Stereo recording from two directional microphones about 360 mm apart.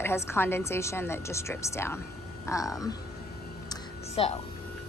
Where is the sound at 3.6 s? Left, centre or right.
Centre.